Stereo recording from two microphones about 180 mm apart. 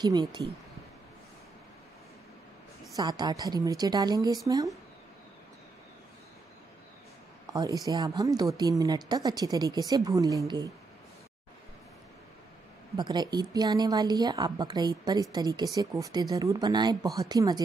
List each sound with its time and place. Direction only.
0.0 s a woman's voice: 25° right (ahead or behind)
3.0 s a woman's voice: 20° right (ahead or behind)
7.5 s a woman's voice: 20° right (ahead or behind)
12.9 s a woman's voice: 25° right (ahead or behind)